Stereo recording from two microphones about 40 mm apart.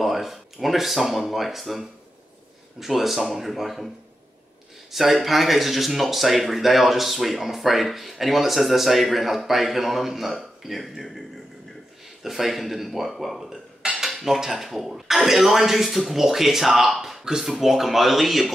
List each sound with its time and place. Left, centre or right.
0.0 s speech: centre
4.9 s speech: centre
17.2 s speech: centre